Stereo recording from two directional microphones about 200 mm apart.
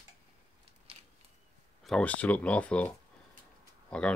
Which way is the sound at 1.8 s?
5° left (ahead or behind).